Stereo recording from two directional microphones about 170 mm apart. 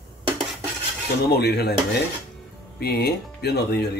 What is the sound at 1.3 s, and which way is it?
Speech, 70° left (ahead or behind).